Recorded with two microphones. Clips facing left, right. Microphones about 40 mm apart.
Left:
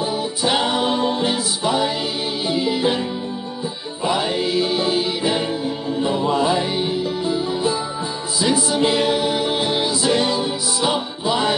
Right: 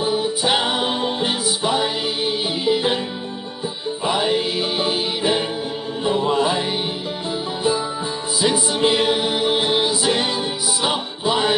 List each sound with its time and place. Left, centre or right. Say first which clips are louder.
0.0 s music: right 1 dB; centre
4.0 s music: even; centre